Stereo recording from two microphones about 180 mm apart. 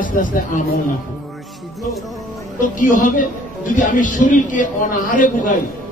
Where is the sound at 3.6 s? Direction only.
45° left (ahead or behind).